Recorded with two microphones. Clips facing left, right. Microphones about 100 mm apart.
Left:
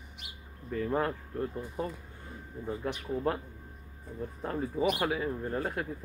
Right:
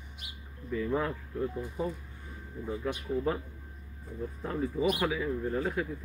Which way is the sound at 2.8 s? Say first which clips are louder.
Right 1 dB; 55° left (ahead or behind).